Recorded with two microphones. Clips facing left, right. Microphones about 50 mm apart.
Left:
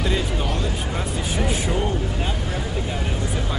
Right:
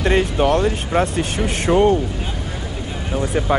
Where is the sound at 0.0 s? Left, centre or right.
Right.